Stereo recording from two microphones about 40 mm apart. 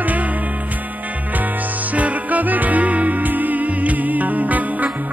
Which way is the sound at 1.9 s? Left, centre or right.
Right.